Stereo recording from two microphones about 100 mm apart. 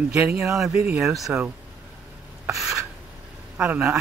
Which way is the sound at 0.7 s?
15° right (ahead or behind).